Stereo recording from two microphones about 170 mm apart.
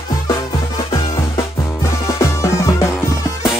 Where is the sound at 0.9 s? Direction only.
20° left (ahead or behind).